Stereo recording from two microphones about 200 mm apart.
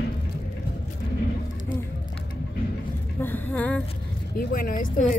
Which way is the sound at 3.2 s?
10° left (ahead or behind).